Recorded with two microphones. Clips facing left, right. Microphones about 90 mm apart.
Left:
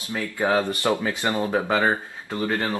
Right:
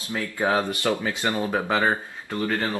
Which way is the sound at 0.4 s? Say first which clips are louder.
Left 1 dB; 15° right (ahead or behind).